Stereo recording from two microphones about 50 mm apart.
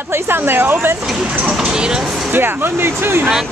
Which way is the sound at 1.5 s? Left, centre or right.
Centre.